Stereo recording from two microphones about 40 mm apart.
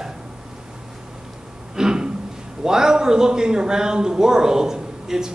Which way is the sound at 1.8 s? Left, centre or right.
Centre.